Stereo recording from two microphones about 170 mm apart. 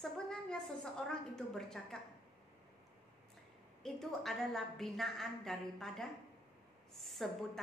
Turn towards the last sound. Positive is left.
turn(degrees=0)  # may be behind; listen again after turning